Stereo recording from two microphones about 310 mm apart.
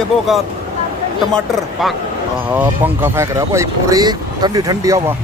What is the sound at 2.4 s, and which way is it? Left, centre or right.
Speech, centre.